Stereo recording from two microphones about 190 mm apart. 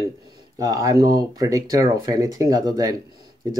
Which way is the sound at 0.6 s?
20° right (ahead or behind).